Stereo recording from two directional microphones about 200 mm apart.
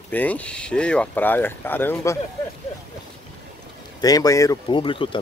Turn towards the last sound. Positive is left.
turn(degrees=25)  # may be behind; listen again after turning